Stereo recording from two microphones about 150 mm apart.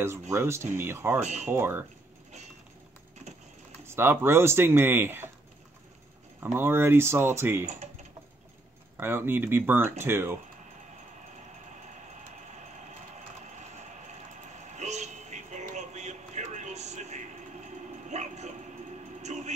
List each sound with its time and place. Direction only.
0.3 s speech: 15° right (ahead or behind)
1.2 s speech: 50° right (ahead or behind)
1.5 s speech: 15° right (ahead or behind)
3.8 s speech: 15° right (ahead or behind)
6.4 s speech: 15° right (ahead or behind)
8.9 s speech: 15° right (ahead or behind)
14.8 s a sound: 50° right (ahead or behind)
18.0 s bow-wow: 50° right (ahead or behind)
19.2 s music: 50° right (ahead or behind)